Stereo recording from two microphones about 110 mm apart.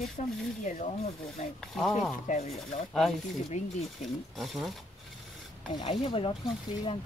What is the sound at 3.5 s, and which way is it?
Speech, 90° left.